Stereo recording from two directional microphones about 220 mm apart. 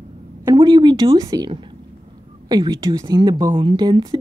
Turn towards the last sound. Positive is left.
turn(degrees=-20)  # may be behind; listen again after turning